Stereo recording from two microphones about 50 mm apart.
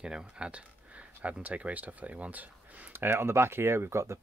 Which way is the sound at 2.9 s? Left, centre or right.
Right.